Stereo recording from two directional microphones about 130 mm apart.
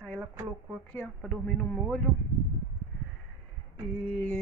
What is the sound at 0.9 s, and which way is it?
A woman's voice, 10° left (ahead or behind).